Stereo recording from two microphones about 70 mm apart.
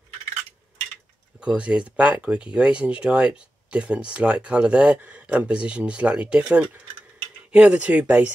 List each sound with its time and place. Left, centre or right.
1.4 s speech: centre